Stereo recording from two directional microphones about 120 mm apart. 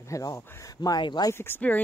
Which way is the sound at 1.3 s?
20° left (ahead or behind).